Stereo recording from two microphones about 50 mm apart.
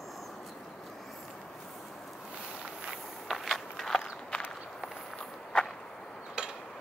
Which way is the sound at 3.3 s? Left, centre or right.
Centre.